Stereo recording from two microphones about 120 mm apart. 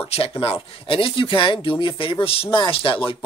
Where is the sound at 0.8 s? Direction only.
50° left (ahead or behind).